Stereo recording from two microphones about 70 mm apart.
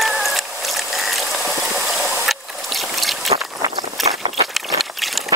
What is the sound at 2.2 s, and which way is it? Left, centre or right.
Boat, centre.